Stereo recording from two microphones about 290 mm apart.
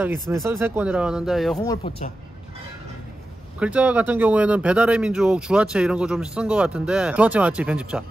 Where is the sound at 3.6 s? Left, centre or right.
Centre.